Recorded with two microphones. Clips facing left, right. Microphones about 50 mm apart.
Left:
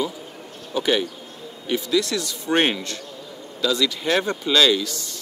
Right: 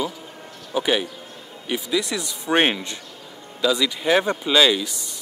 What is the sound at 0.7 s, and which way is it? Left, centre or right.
Speech, centre.